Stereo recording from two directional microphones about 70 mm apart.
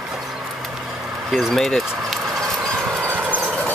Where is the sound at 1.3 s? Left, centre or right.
Centre.